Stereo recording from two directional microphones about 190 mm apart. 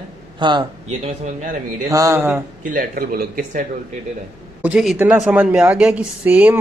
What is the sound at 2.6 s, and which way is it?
Speech, 45° right (ahead or behind).